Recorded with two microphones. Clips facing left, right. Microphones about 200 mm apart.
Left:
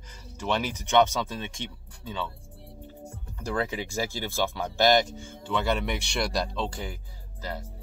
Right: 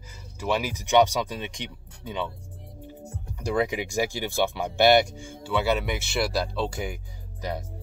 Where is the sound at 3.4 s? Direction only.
15° right (ahead or behind).